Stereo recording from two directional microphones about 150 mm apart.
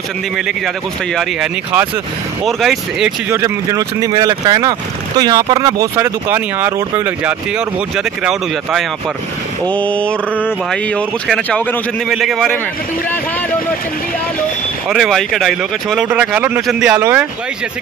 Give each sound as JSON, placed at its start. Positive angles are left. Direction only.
{"t": 2.4, "sound": "speech", "side_deg": 0}
{"t": 3.3, "sound": "speech", "side_deg": -20}
{"t": 9.7, "sound": "speech", "side_deg": 10}
{"t": 12.1, "sound": "speech", "side_deg": 0}
{"t": 14.9, "sound": "speech", "side_deg": 0}
{"t": 16.1, "sound": "speech", "side_deg": -15}